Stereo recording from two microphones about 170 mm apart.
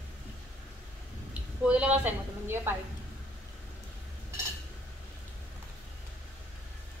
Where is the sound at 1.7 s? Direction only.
5° right (ahead or behind).